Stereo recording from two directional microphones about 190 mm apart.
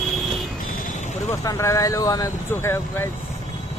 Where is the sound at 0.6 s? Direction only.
45° left (ahead or behind).